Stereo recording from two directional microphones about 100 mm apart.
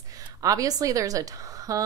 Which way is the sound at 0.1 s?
35° right (ahead or behind).